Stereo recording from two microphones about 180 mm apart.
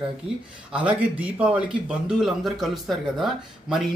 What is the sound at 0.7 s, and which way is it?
A man's voice, 5° right (ahead or behind).